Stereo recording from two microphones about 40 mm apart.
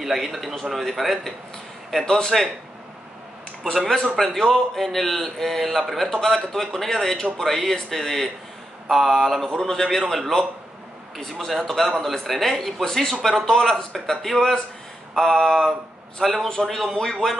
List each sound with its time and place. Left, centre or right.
0.0 s a man's voice: centre
2.0 s speech: centre
4.2 s a man's voice: centre